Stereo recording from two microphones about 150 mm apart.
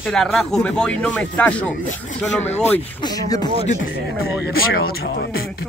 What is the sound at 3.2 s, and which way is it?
Speech, 25° left (ahead or behind).